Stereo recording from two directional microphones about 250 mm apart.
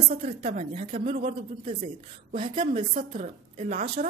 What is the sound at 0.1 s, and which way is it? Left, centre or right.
A woman's voice, right.